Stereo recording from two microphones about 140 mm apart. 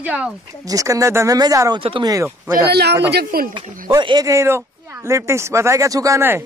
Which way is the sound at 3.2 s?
90° right.